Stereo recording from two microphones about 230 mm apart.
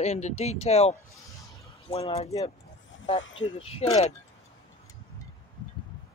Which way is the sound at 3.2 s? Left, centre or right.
Left.